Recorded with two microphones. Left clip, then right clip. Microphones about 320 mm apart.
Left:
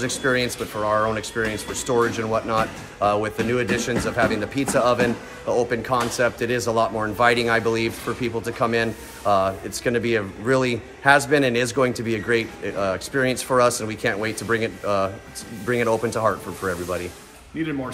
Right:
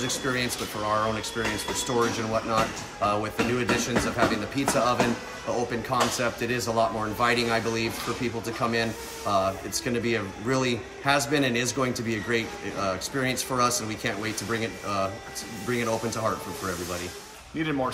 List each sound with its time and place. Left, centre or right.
0.0 s speech: centre
17.6 s speech: centre